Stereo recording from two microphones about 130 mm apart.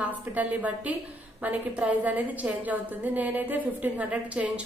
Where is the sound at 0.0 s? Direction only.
10° right (ahead or behind).